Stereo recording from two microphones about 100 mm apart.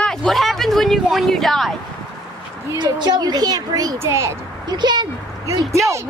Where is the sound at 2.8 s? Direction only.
45° right (ahead or behind); by 4.3 s 30° right (ahead or behind).